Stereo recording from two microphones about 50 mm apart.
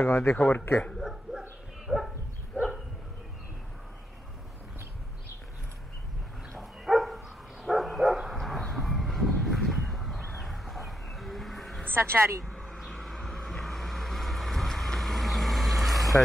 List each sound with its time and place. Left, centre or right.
0.0 s speech: left
1.3 s bow-wow: centre
1.9 s dog: centre
2.5 s dog: right
6.6 s dog: centre
7.6 s bow-wow: centre
8.5 s a sound: centre
11.9 s speech: right
12.4 s vehicle: centre
13.0 s vehicle: centre